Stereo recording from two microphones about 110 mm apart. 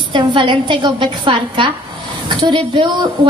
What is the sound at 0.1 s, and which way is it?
Speech, 45° right (ahead or behind).